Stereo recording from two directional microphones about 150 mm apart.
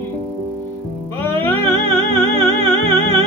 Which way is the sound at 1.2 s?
15° left (ahead or behind).